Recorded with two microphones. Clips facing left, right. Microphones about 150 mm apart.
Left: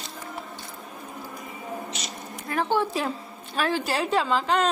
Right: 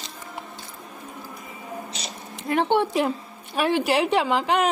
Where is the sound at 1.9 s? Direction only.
30° right (ahead or behind).